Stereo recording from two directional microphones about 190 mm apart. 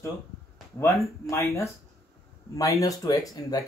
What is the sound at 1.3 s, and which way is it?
A man's voice, 15° left (ahead or behind).